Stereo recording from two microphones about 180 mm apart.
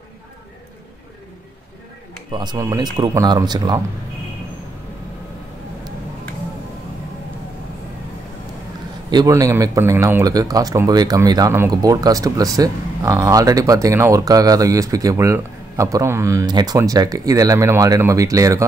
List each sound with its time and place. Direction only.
2.3 s speech: 20° right (ahead or behind)
9.1 s speech: 20° right (ahead or behind)